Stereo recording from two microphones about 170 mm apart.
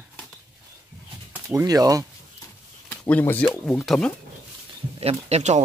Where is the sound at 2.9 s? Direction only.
10° left (ahead or behind).